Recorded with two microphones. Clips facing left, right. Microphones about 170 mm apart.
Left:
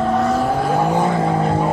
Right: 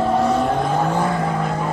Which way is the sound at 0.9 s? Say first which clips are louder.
Left 3 dB; 25° left (ahead or behind).